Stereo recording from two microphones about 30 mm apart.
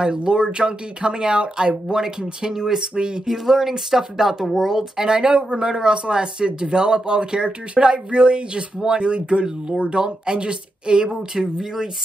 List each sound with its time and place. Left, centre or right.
0.0 s speech: right
2.9 s speech: right
3.3 s speech: centre
5.0 s speech: right
11.5 s speech: centre